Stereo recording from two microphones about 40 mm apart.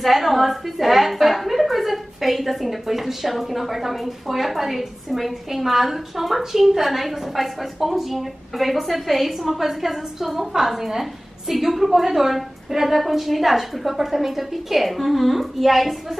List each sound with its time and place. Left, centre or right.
0.0 s a woman's voice: centre